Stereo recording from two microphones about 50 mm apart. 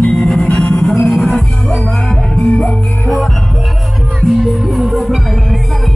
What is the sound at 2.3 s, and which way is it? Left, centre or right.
Music, centre.